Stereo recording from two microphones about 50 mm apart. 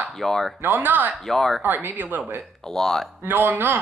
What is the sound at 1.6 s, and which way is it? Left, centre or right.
Speech, right.